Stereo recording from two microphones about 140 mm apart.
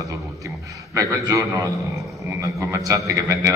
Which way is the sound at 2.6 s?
20° right (ahead or behind).